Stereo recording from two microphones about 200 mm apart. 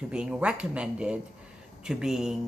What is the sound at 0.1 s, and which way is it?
Speech, 5° right (ahead or behind).